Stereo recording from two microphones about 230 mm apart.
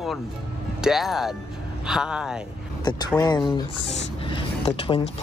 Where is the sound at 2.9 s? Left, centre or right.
Centre.